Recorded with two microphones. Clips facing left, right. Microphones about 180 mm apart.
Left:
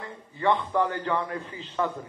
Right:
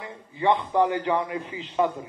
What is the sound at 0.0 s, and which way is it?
A man's voice, 15° right (ahead or behind).